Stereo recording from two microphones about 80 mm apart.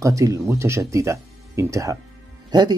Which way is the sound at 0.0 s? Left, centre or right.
Right.